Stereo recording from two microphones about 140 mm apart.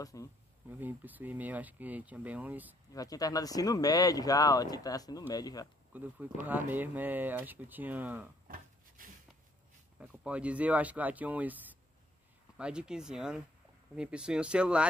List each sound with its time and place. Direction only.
0.0 s speech: 25° left (ahead or behind)
0.7 s speech: 10° right (ahead or behind)
2.9 s speech: 25° left (ahead or behind)
5.9 s speech: 15° right (ahead or behind)
8.5 s wood: 85° right
9.9 s speech: 10° right (ahead or behind)